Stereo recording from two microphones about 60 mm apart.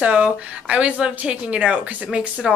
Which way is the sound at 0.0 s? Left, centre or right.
Right.